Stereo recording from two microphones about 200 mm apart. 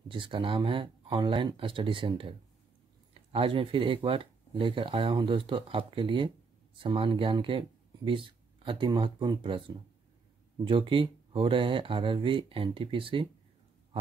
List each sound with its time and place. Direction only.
0.1 s speech: 25° right (ahead or behind)